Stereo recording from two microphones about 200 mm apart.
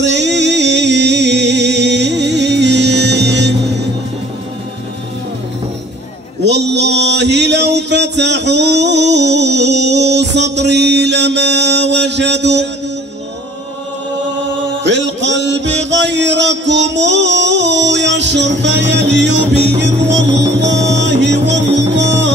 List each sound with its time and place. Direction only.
0.0 s music: 60° right (ahead or behind)
6.4 s mantra: 60° right (ahead or behind)
14.8 s music: 60° right (ahead or behind)